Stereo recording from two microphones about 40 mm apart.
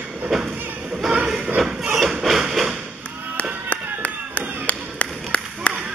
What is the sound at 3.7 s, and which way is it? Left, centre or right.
Clapping, left.